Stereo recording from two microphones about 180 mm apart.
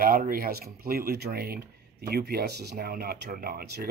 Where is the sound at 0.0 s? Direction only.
50° right (ahead or behind).